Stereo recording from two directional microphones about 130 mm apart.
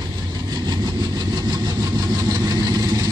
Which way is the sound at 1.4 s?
35° right (ahead or behind).